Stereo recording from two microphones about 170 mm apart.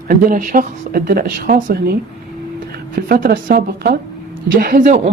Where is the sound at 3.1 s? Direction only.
55° right (ahead or behind).